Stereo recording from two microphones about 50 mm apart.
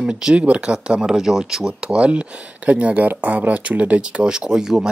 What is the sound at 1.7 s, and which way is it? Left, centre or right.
Speech, right.